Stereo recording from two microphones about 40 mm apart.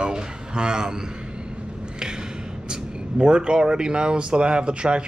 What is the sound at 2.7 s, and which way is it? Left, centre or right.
Speech, right.